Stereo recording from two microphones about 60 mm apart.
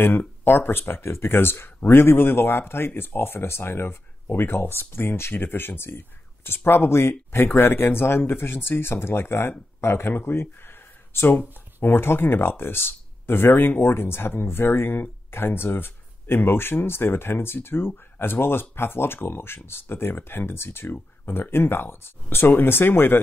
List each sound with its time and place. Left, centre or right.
0.0 s speech: left